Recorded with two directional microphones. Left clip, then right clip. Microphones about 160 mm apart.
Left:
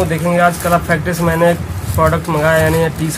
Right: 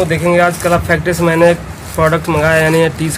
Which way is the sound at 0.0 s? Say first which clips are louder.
Right 2 dB; 30° right (ahead or behind).